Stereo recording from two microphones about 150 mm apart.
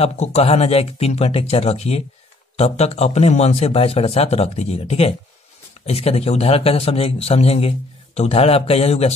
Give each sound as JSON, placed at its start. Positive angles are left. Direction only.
{"t": 0.0, "sound": "a man's voice", "side_deg": 45}